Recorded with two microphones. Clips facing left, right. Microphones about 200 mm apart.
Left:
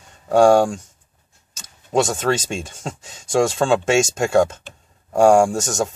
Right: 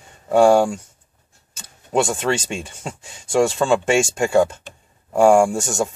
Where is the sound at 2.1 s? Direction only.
10° right (ahead or behind).